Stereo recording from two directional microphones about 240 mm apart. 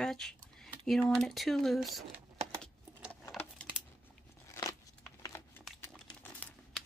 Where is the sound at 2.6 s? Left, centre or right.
Centre.